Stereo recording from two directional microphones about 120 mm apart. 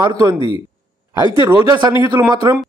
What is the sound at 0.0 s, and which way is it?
Speech, 35° right (ahead or behind).